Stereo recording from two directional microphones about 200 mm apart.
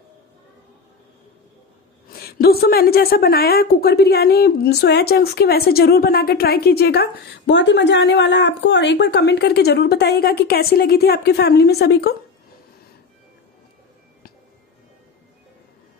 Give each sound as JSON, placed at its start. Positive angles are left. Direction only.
{"t": 2.1, "sound": "a woman's voice", "side_deg": 50}